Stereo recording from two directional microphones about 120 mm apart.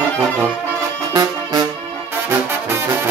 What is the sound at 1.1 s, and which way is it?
Music, 35° right (ahead or behind).